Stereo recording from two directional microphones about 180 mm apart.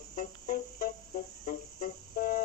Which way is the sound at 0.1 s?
60° left (ahead or behind).